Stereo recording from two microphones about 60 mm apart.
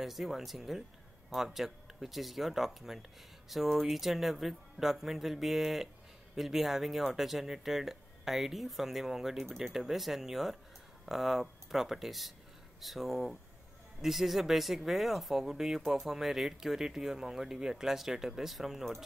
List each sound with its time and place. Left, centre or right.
0.0 s speech: centre